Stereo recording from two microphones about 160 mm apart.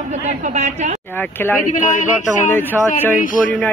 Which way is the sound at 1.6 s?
50° left (ahead or behind).